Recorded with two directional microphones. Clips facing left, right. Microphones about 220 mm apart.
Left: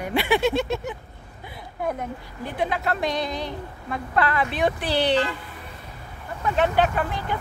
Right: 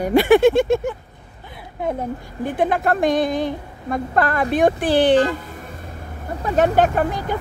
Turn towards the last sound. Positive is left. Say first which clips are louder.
# right 5 dB
turn(degrees=-45)  # may be behind; listen again after turning